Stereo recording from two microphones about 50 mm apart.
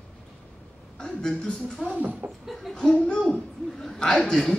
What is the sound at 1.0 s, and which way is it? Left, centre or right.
Speech, centre.